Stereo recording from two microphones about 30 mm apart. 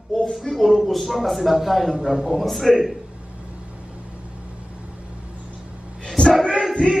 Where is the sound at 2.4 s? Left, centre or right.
Centre.